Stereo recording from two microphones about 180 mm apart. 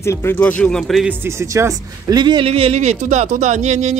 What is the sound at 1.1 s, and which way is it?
Speech, 15° right (ahead or behind).